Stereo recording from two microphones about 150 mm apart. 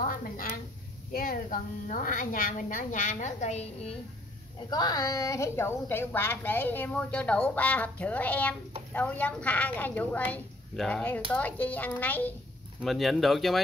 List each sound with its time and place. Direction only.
0.0 s a woman's voice: 60° left (ahead or behind); by 3.9 s 45° left (ahead or behind)
4.6 s a woman's voice: 25° left (ahead or behind); by 12.4 s 10° left (ahead or behind)
12.8 s speech: centre (ahead or behind)